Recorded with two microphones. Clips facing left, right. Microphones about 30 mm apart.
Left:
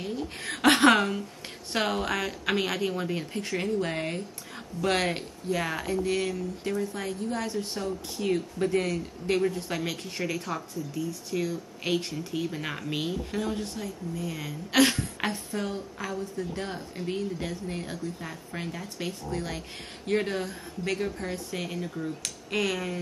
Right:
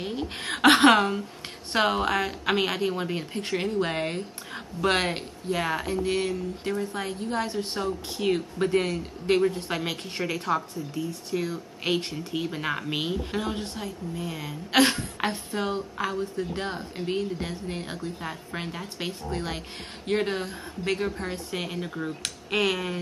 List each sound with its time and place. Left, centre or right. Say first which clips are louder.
0.0 s speech: right 2 dB; right
0.9 s a woman's voice: right 3 dB; centre
1.7 s a woman's voice: right 4 dB; right